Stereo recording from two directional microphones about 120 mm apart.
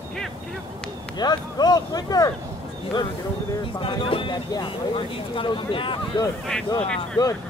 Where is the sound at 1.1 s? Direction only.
35° left (ahead or behind).